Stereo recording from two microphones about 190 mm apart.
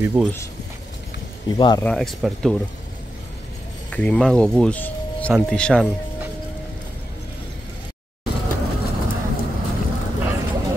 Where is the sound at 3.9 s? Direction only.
5° left (ahead or behind).